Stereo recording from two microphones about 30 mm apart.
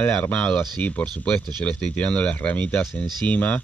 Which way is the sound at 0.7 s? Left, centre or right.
Left.